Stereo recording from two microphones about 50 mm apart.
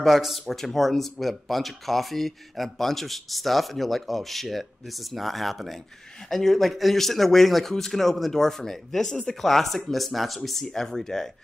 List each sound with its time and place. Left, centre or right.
0.0 s speech: centre